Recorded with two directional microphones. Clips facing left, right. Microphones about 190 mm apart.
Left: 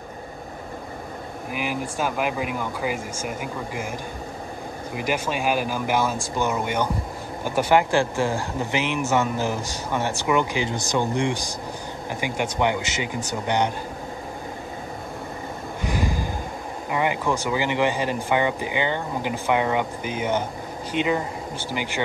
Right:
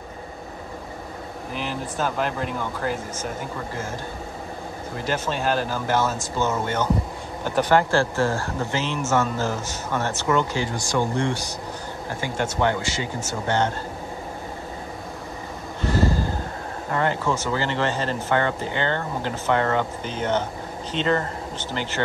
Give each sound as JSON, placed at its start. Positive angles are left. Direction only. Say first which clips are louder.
{"t": 1.5, "sound": "speech", "louder": "left 2 dB", "side_deg": 10}
{"t": 4.9, "sound": "speech", "louder": "left 1 dB", "side_deg": 10}
{"t": 15.8, "sound": "snort", "louder": "right 5 dB", "side_deg": 15}
{"t": 16.9, "sound": "speech", "louder": "even", "side_deg": 15}